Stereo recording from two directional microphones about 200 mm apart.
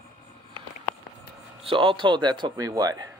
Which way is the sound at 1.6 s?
25° right (ahead or behind).